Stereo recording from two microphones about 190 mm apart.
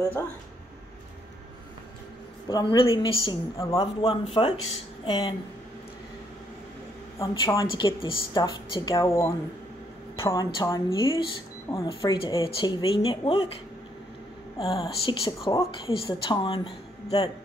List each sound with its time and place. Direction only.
2.5 s speech: 25° left (ahead or behind)
7.2 s speech: 20° left (ahead or behind)
14.6 s speech: 25° left (ahead or behind)